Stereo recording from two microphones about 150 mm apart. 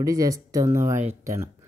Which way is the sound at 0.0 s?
20° right (ahead or behind).